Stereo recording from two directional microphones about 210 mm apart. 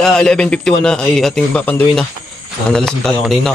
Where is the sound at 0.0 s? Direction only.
5° left (ahead or behind).